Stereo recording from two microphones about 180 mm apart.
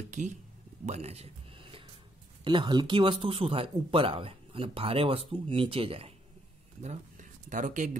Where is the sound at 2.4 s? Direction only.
25° right (ahead or behind); by 7.9 s 45° right (ahead or behind).